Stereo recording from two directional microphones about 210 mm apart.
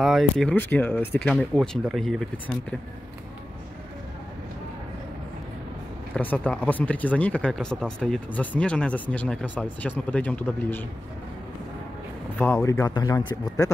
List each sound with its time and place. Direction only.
0.0 s speech: centre (ahead or behind)
6.1 s speech: 5° left (ahead or behind)
12.4 s speech: 10° left (ahead or behind)